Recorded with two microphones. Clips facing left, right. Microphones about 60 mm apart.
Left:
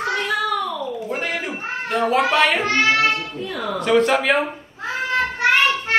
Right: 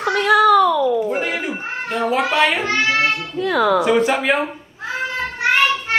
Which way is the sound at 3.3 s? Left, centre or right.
Right.